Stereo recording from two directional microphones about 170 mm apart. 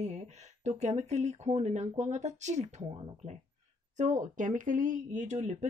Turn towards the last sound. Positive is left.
turn(degrees=-45)  # may be behind; listen again after turning